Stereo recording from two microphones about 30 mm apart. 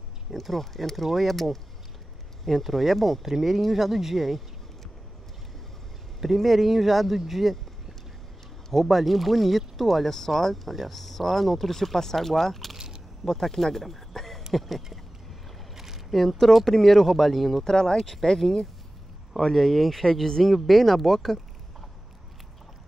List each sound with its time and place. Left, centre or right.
0.3 s speech: centre
6.2 s speech: centre
8.7 s speech: centre
12.7 s a sound: centre
13.3 s speech: centre
15.7 s boat: centre
16.1 s speech: centre
17.6 s speech: left
17.9 s speech: centre